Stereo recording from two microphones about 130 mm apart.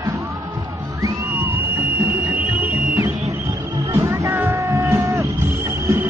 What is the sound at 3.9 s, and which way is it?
Music, 20° right (ahead or behind).